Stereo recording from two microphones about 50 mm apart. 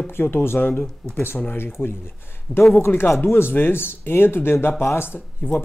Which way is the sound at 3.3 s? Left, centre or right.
Left.